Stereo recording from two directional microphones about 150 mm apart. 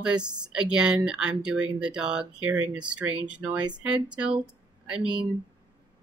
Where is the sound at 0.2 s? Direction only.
30° right (ahead or behind).